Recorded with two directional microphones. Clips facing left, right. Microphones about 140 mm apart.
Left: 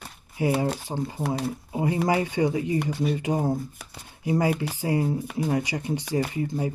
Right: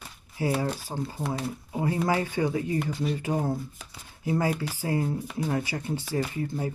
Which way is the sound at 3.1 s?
15° left (ahead or behind).